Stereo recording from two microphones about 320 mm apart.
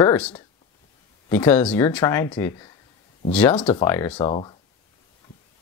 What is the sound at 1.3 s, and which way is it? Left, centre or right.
Speech, centre.